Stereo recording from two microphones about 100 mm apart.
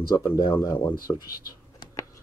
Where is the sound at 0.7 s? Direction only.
20° left (ahead or behind).